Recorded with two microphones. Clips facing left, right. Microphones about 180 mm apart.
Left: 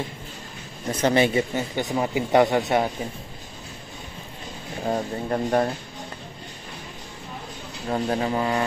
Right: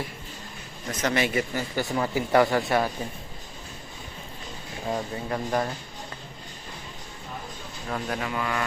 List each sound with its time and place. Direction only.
1.0 s speech: 30° left (ahead or behind)
4.8 s speech: 35° left (ahead or behind)
7.9 s speech: 30° left (ahead or behind)